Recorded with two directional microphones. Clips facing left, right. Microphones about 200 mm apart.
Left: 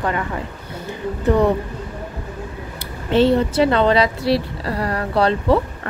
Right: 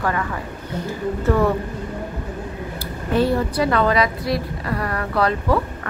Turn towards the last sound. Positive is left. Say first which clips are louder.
# left 3 dB
turn(degrees=30)  # may be behind; listen again after turning